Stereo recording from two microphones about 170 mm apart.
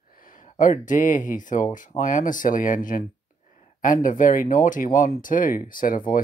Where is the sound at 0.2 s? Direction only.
50° left (ahead or behind).